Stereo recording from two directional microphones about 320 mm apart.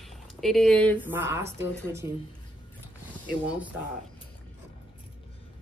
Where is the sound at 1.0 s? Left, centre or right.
Centre.